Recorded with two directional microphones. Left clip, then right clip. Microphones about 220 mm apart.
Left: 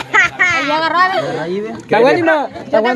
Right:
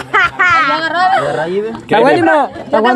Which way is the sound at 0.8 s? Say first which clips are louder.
Left 1 dB; 20° left (ahead or behind).